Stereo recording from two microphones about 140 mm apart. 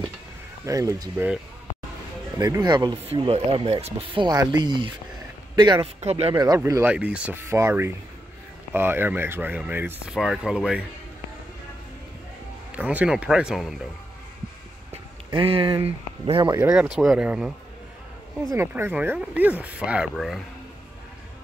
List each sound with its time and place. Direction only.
0.7 s speech: 25° right (ahead or behind)
1.1 s speech: 15° right (ahead or behind)
2.3 s speech: 25° right (ahead or behind)
3.1 s speech: 45° right (ahead or behind)
5.9 s speech: 45° right (ahead or behind)
6.3 s speech: 30° right (ahead or behind)
6.6 s speech: 15° right (ahead or behind)
7.4 s speech: 20° right (ahead or behind)
10.1 s speech: centre (ahead or behind)
12.7 s speech: 10° right (ahead or behind)
15.3 s speech: 40° right (ahead or behind)
16.7 s speech: 5° right (ahead or behind)
18.5 s speech: 20° right (ahead or behind)